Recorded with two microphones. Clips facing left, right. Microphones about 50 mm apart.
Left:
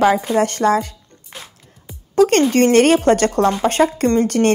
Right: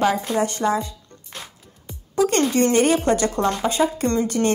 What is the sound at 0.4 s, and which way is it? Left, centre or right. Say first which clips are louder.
Speech: left 5 dB; left.